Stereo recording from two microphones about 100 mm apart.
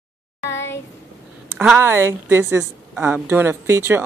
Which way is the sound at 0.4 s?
25° left (ahead or behind).